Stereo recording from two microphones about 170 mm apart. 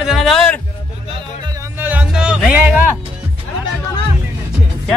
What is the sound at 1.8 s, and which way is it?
Music, 10° right (ahead or behind).